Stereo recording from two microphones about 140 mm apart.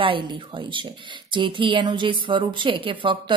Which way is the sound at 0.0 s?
35° right (ahead or behind).